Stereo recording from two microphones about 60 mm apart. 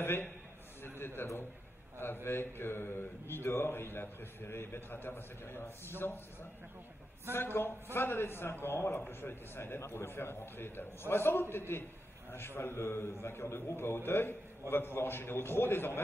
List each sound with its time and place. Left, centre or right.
0.0 s a man's voice: left
7.3 s a man's voice: left